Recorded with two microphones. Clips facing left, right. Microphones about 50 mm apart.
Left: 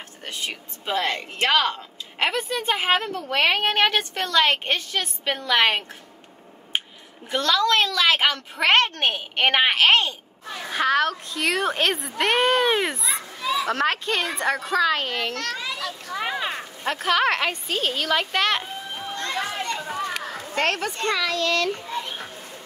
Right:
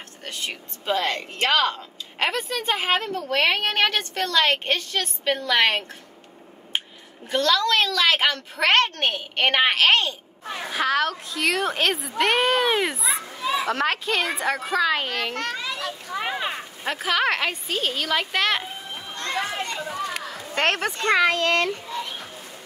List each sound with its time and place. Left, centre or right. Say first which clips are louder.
0.5 s a woman's voice: right 4 dB; centre
7.2 s a woman's voice: even; centre
13.4 s children playing: even; right
13.7 s a woman's voice: even; centre
15.3 s a child's voice: right 1 dB; right; by 18.7 s centre
20.5 s speech: right 1 dB; right